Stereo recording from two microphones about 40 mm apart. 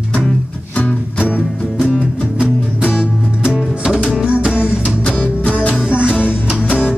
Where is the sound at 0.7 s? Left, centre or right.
Left.